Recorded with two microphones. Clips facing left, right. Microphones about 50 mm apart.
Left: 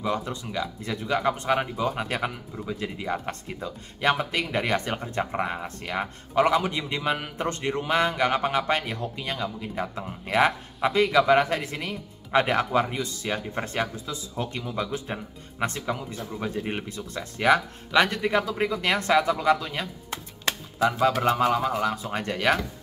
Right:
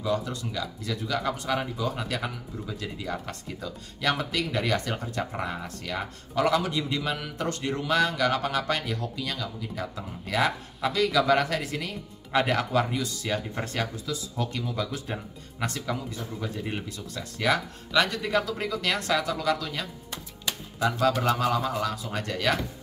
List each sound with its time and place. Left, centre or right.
0.0 s speech: left
21.2 s speech: left